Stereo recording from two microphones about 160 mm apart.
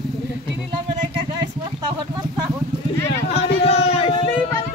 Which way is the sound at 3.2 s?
40° left (ahead or behind).